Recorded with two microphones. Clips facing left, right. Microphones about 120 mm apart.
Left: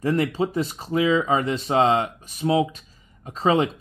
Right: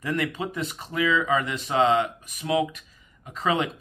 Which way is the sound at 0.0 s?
40° left (ahead or behind).